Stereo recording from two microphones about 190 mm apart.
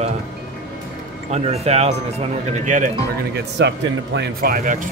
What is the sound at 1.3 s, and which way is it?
Speech, 35° right (ahead or behind).